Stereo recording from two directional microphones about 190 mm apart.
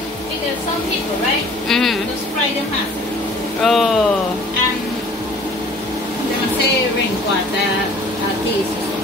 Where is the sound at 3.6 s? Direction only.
Centre (ahead or behind).